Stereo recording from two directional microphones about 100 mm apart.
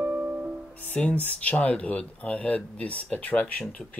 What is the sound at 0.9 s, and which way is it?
Speech, 15° left (ahead or behind).